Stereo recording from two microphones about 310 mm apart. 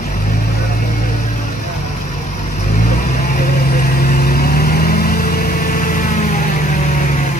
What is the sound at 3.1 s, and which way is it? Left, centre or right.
Vehicle, left.